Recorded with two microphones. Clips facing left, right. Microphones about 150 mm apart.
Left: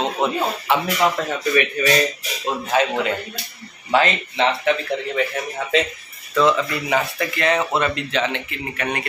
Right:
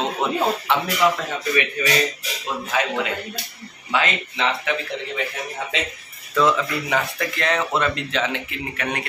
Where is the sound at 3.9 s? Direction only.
35° left (ahead or behind).